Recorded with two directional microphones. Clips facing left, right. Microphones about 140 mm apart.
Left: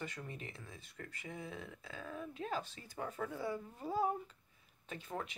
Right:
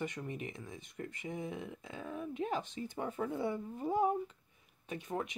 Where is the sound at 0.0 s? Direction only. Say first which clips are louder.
Right 6 dB; 20° right (ahead or behind).